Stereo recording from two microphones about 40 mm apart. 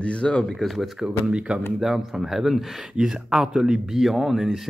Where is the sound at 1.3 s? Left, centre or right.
Right.